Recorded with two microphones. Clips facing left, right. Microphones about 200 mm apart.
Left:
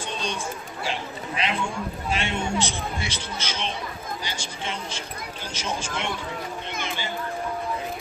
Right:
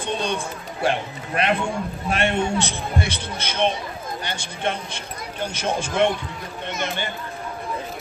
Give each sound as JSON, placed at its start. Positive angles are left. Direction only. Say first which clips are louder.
{"t": 0.0, "sound": "speech", "louder": "right 5 dB", "side_deg": -60}